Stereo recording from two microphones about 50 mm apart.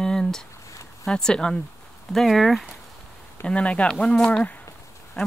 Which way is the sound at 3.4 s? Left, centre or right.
Left.